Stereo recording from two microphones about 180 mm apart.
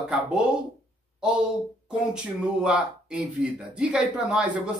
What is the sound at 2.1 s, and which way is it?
Speech, 5° right (ahead or behind).